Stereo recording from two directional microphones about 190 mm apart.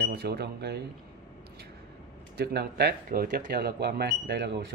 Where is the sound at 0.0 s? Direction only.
55° right (ahead or behind).